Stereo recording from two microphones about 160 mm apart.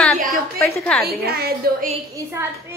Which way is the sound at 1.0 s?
75° right (ahead or behind).